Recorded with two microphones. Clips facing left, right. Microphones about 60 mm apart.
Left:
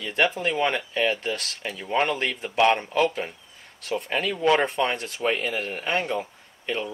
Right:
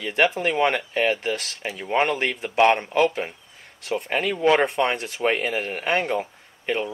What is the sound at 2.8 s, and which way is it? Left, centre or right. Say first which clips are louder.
Speech: right 2 dB; right.